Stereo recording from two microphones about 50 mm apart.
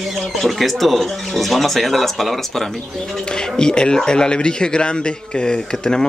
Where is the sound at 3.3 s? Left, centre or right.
Centre.